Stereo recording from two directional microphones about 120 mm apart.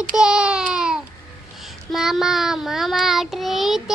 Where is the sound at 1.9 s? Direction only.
5° right (ahead or behind).